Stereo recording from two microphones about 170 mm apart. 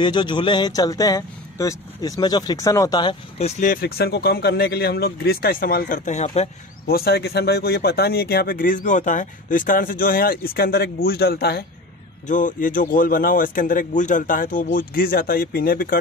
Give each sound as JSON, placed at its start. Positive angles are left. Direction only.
{"t": 0.0, "sound": "speech", "side_deg": 25}
{"t": 6.9, "sound": "speech", "side_deg": 65}
{"t": 12.3, "sound": "a man's voice", "side_deg": 50}